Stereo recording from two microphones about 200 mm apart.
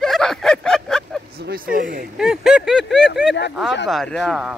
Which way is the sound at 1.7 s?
45° right (ahead or behind).